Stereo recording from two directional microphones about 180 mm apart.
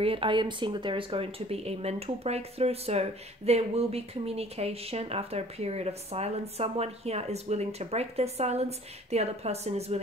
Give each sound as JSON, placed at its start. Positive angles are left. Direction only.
{"t": 0.0, "sound": "speech", "side_deg": -30}